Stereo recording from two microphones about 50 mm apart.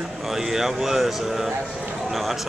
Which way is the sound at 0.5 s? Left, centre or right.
Centre.